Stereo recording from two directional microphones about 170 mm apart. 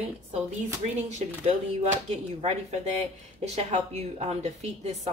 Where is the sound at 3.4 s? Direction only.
40° right (ahead or behind).